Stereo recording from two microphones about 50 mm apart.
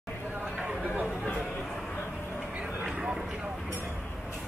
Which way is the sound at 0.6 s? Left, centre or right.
Right.